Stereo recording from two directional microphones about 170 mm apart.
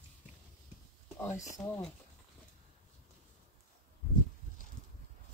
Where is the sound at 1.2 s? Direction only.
15° left (ahead or behind).